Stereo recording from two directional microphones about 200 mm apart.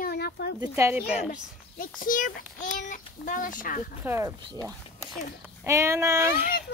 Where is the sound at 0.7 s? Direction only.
10° right (ahead or behind).